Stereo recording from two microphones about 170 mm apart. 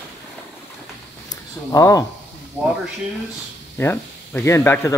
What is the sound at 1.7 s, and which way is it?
Speech, 20° left (ahead or behind).